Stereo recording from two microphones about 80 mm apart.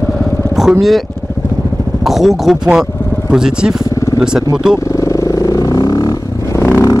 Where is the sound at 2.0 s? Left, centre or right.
Centre.